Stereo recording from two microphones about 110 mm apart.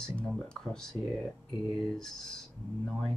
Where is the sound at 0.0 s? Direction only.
5° left (ahead or behind).